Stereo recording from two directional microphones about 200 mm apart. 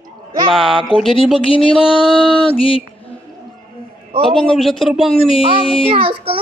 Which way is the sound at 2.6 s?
25° left (ahead or behind).